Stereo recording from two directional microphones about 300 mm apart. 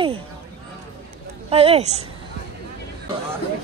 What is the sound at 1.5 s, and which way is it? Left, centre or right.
Speech, centre.